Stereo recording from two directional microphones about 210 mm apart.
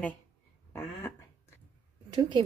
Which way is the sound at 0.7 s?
10° left (ahead or behind).